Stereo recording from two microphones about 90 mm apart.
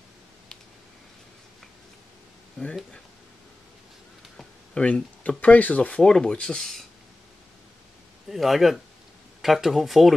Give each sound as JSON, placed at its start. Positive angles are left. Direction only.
{"t": 2.6, "sound": "speech", "side_deg": 10}
{"t": 4.7, "sound": "speech", "side_deg": 15}
{"t": 8.3, "sound": "speech", "side_deg": 0}